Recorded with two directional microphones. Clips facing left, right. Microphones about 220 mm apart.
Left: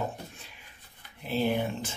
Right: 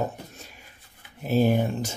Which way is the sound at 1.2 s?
45° right (ahead or behind).